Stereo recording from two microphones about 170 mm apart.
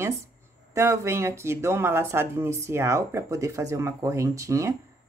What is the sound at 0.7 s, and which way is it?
A woman's voice, 15° right (ahead or behind).